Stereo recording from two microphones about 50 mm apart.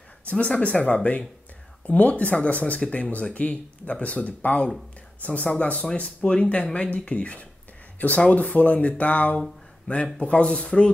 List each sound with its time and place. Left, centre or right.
0.3 s speech: left